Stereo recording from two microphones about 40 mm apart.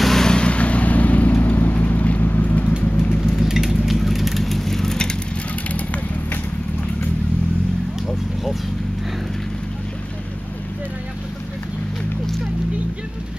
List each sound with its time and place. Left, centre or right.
0.0 s vehicle: centre
0.3 s vehicle: left
3.3 s vehicle: centre